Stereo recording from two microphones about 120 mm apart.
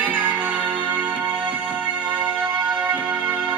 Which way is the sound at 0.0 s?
10° right (ahead or behind).